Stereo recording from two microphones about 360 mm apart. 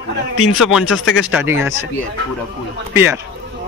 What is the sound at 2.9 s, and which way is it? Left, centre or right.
Speech, centre.